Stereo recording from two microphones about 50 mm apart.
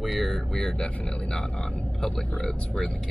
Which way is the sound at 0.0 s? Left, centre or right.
Centre.